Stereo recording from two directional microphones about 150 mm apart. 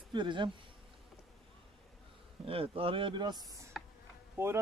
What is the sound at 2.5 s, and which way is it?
Speech, 40° right (ahead or behind).